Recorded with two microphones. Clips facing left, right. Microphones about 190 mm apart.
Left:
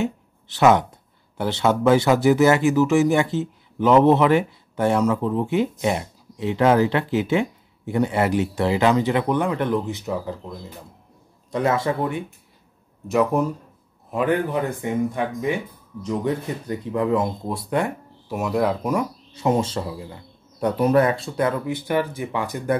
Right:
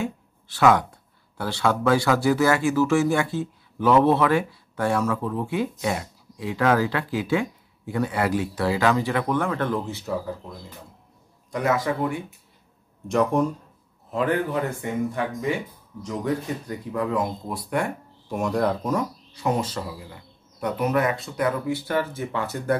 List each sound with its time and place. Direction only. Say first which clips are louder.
0.0 s a sound: left 4 dB; 20° left (ahead or behind)
1.4 s speech: left 4 dB; 20° left (ahead or behind)
11.5 s speech: left 2 dB; 25° left (ahead or behind)
13.1 s speech: left 1 dB; 5° left (ahead or behind)
14.1 s speech: left 2 dB; 15° left (ahead or behind)
16.6 s speech: left 4 dB; 25° left (ahead or behind)
18.3 s speech: left 1 dB; 5° left (ahead or behind)
19.3 s speech: left 4 dB; 25° left (ahead or behind)